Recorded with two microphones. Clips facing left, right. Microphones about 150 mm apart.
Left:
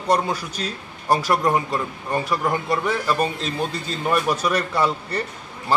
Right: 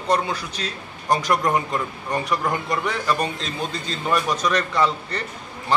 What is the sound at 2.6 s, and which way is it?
A man's voice, 5° left (ahead or behind).